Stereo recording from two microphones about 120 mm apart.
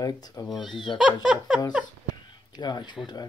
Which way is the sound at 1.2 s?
10° right (ahead or behind).